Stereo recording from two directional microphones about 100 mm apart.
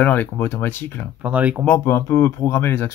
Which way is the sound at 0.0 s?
20° left (ahead or behind).